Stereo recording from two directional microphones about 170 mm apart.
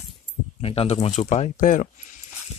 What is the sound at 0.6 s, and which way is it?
Speech, 35° left (ahead or behind).